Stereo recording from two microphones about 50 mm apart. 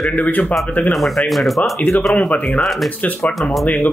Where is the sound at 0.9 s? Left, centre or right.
Centre.